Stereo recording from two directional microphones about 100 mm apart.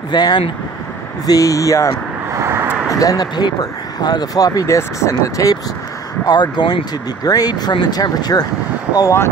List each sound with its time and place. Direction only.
0.1 s speech: 45° left (ahead or behind)
2.3 s vehicle: 25° right (ahead or behind)
2.9 s speech: 35° left (ahead or behind)
6.2 s speech: 45° left (ahead or behind)